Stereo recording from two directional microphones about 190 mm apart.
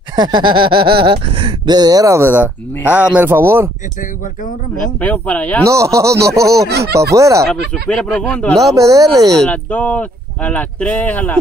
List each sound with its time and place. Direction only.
0.1 s speech: 25° right (ahead or behind)
5.0 s speech: 5° left (ahead or behind)
5.7 s speech: 15° right (ahead or behind)
7.9 s speech: 5° left (ahead or behind)
8.5 s speech: 15° right (ahead or behind)
9.4 s speech: 10° left (ahead or behind)